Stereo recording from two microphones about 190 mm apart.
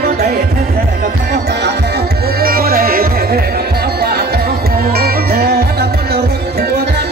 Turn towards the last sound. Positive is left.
turn(degrees=-55)  # may be behind; listen again after turning